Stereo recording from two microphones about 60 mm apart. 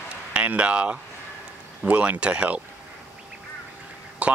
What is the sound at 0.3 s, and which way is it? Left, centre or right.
Speech, right.